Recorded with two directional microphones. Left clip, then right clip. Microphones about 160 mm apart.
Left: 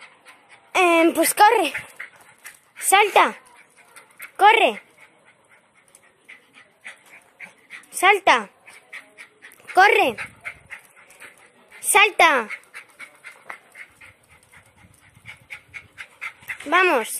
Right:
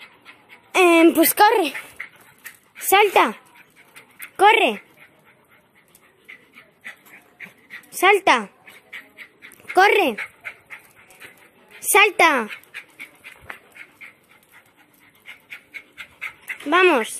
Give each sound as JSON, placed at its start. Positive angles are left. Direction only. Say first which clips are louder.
{"t": 0.7, "sound": "speech", "louder": "right 3 dB", "side_deg": 0}
{"t": 2.0, "sound": "a sound", "louder": "right 2 dB", "side_deg": 15}
{"t": 2.8, "sound": "speech", "louder": "even", "side_deg": 0}
{"t": 4.4, "sound": "speech", "louder": "even", "side_deg": -5}
{"t": 6.8, "sound": "dog", "louder": "right 2 dB", "side_deg": 0}
{"t": 9.6, "sound": "speech", "louder": "even", "side_deg": 0}
{"t": 11.9, "sound": "a woman's voice", "louder": "even", "side_deg": -10}
{"t": 16.2, "sound": "dog", "louder": "right 1 dB", "side_deg": 0}
{"t": 16.6, "sound": "speech", "louder": "right 2 dB", "side_deg": 0}